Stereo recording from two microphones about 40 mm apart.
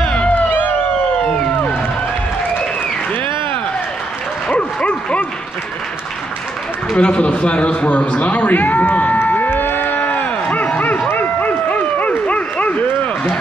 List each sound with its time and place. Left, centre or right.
0.3 s music: left
4.5 s bow-wow: left
7.0 s a man's voice: left
9.3 s a sound: left